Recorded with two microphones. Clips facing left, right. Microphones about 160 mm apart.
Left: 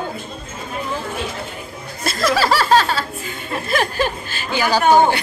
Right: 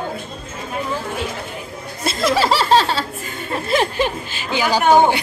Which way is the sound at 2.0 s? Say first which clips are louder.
Right 1 dB; 25° right (ahead or behind).